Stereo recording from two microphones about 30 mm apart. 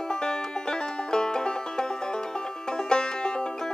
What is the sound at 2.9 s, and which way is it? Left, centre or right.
Music, left.